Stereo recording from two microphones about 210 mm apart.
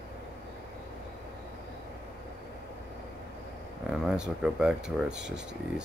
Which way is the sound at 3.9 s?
5° right (ahead or behind).